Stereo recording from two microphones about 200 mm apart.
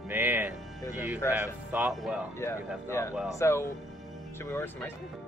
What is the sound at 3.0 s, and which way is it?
Speech, 15° left (ahead or behind).